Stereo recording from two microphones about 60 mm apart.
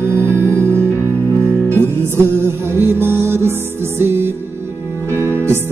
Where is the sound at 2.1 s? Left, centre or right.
Right.